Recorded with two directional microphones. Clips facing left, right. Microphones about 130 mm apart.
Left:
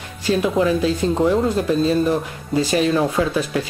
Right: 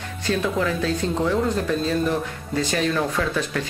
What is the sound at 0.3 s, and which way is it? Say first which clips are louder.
Speech: left 5 dB; 15° left (ahead or behind).